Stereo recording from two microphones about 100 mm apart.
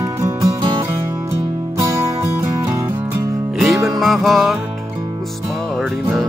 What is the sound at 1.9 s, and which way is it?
Music, 30° right (ahead or behind).